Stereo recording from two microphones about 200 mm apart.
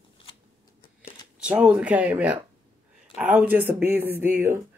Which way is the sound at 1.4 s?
5° right (ahead or behind).